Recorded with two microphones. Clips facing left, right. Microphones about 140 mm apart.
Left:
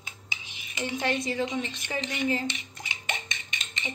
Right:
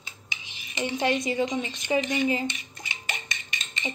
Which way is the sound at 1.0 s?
15° right (ahead or behind).